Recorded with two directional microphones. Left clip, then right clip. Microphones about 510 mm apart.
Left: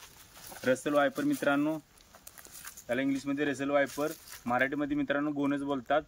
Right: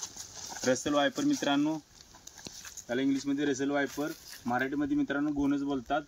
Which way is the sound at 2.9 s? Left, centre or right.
Centre.